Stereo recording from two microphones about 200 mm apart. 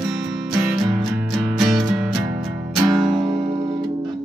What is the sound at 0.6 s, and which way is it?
Music, 5° right (ahead or behind).